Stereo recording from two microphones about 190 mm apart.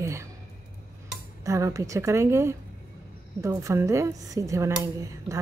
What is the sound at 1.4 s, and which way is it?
A woman's voice, 15° right (ahead or behind).